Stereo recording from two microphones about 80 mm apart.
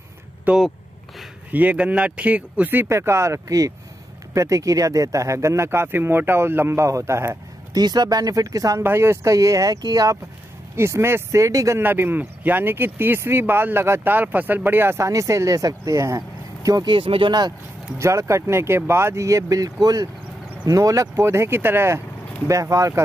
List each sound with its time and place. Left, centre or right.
0.5 s speech: centre; by 7.3 s right
7.7 s speech: right
8.8 s speech: right
10.8 s speech: right
11.4 s speech: right
11.8 s speech: right
16.2 s vehicle: right
16.8 s speech: right
17.9 s speech: right
21.2 s speech: right
22.5 s speech: right